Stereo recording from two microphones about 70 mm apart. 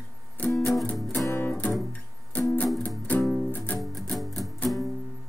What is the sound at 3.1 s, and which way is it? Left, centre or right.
Music, left.